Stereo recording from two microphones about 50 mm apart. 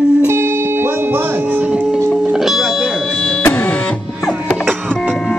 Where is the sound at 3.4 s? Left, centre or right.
Left.